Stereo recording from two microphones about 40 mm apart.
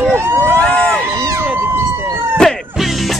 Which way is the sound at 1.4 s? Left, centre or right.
Right.